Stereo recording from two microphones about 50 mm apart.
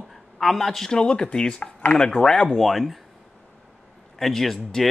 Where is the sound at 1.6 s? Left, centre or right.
Left.